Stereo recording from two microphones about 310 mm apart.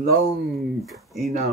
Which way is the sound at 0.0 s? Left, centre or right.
Right.